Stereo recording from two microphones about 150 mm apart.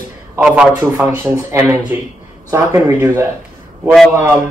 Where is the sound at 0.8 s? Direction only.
20° right (ahead or behind).